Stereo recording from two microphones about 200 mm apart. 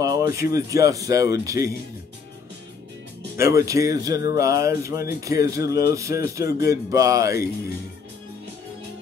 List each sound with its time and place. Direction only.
0.0 s a sound: 15° right (ahead or behind)
0.7 s speech: 15° right (ahead or behind)
3.3 s speech: 15° right (ahead or behind)